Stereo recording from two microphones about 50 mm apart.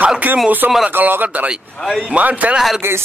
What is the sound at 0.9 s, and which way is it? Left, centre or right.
A man's voice, right.